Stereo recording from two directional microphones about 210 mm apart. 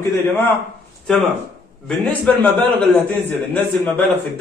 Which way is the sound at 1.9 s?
5° left (ahead or behind).